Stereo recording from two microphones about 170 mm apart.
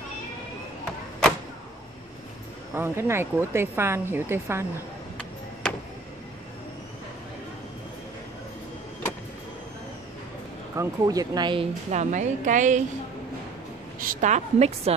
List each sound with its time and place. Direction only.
2.7 s a woman's voice: 15° right (ahead or behind)
5.1 s a sound: 5° left (ahead or behind)
10.8 s speech: 20° right (ahead or behind)
11.9 s a woman's voice: 45° right (ahead or behind)
13.9 s a woman's voice: 50° right (ahead or behind)